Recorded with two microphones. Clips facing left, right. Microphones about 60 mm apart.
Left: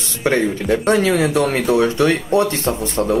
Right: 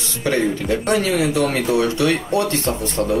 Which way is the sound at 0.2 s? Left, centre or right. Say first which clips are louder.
Left 2 dB; left.